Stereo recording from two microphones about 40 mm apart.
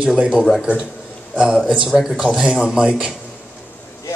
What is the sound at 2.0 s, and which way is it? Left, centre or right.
Speech, centre.